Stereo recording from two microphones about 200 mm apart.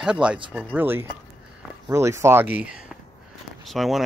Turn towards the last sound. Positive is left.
turn(degrees=0)  # may be behind; listen again after turning